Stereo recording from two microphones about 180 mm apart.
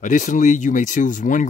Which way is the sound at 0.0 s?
45° left (ahead or behind).